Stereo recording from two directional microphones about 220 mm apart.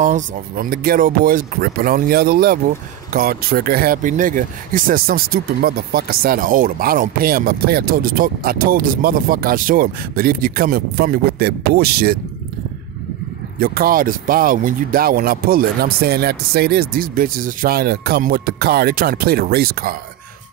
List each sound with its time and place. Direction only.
0.0 s speech: 35° right (ahead or behind)
13.6 s speech: 40° right (ahead or behind)